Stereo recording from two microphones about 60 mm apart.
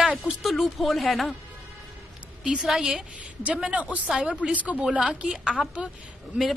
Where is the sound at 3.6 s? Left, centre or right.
Right.